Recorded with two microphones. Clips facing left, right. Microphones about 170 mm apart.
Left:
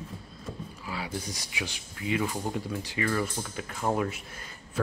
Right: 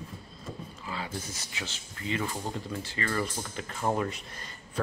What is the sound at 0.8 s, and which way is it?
Speech, 10° left (ahead or behind).